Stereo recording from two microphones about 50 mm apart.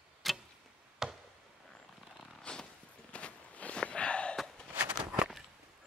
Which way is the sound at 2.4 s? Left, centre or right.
Centre.